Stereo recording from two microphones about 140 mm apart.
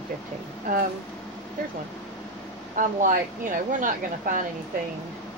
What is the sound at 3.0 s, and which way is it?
Speech, 75° right (ahead or behind).